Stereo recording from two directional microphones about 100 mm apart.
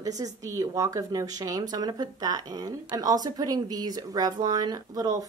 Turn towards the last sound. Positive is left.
turn(degrees=-35)  # may be behind; listen again after turning